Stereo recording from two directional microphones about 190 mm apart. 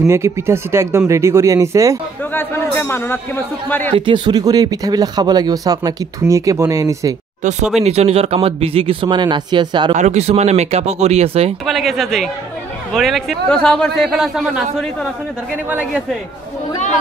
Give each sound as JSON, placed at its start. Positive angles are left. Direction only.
{"t": 0.0, "sound": "speech", "side_deg": -15}
{"t": 2.3, "sound": "speech", "side_deg": 10}
{"t": 3.9, "sound": "speech", "side_deg": -25}
{"t": 7.8, "sound": "speech", "side_deg": -35}
{"t": 9.9, "sound": "speech", "side_deg": -35}
{"t": 11.6, "sound": "a man's voice", "side_deg": 0}